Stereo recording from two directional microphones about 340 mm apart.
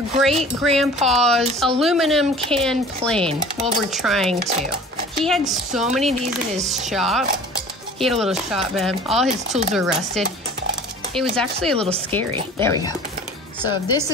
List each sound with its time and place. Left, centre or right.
0.2 s speech: centre
3.3 s speech: centre
3.9 s speech: centre
5.4 s speech: centre
9.3 s speech: centre
9.8 s speech: centre
11.3 s speech: centre